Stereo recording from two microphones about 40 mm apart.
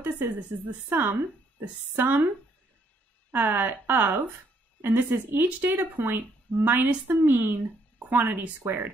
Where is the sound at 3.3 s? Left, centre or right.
Right.